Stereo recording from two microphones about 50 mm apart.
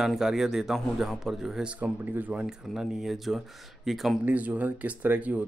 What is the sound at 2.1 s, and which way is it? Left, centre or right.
Speech, right.